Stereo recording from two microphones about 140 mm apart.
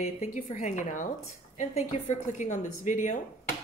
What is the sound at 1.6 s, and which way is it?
A woman's voice, 55° left (ahead or behind).